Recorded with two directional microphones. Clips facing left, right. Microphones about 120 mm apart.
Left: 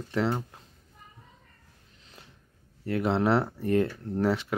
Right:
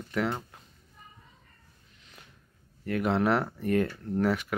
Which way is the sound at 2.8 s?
25° left (ahead or behind).